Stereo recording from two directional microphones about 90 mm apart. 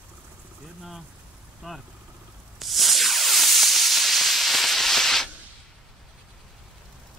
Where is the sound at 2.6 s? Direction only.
Centre (ahead or behind).